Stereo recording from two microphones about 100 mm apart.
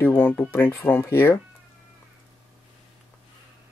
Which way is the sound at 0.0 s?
20° left (ahead or behind).